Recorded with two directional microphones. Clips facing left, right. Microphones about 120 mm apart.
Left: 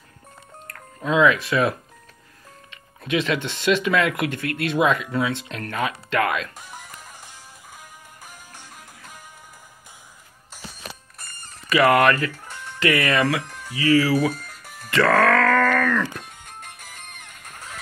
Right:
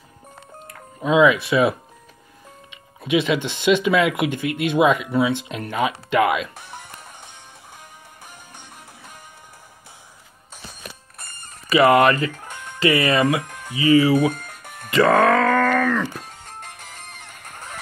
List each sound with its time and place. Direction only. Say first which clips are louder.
0.7 s speech: right 3 dB; 15° right (ahead or behind)
2.7 s music: right 4 dB; 15° right (ahead or behind)
3.6 s speech: right 3 dB; 15° right (ahead or behind)
6.7 s music: right 2 dB; 5° left (ahead or behind)
11.7 s speech: right 2 dB; 5° right (ahead or behind)
12.4 s music: right 2 dB; 45° right (ahead or behind)
12.9 s speech: right 2 dB; 25° right (ahead or behind)
13.5 s music: right 2 dB; 55° right (ahead or behind)
13.7 s speech: right 3 dB; 20° right (ahead or behind)
14.3 s music: right 2 dB; 50° right (ahead or behind)
15.0 s music: right 2 dB; 20° right (ahead or behind)